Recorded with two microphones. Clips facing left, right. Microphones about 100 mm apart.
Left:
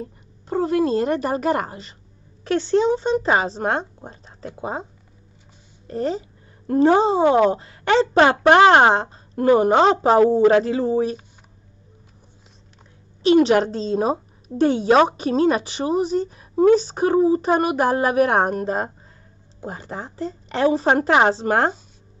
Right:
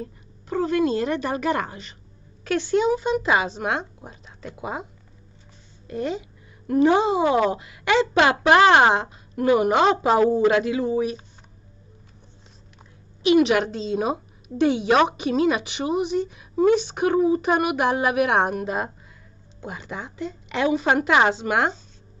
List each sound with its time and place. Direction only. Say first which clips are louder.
0.5 s a woman's voice: left 2 dB; 30° left (ahead or behind)
5.9 s a woman's voice: left 3 dB; 35° left (ahead or behind)
13.2 s a woman's voice: left 3 dB; 35° left (ahead or behind)